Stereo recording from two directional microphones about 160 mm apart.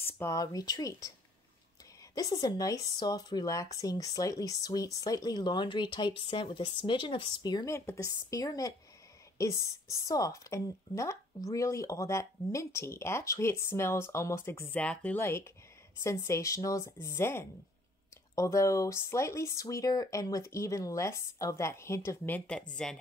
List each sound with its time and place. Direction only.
0.0 s speech: 15° left (ahead or behind)
2.1 s speech: 25° left (ahead or behind)
10.0 s speech: 20° left (ahead or behind); by 22.9 s 5° left (ahead or behind)